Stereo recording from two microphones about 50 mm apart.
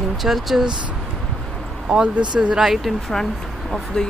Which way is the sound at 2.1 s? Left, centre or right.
Right.